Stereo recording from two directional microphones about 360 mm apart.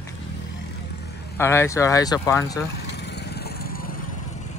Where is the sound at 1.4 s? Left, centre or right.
Centre.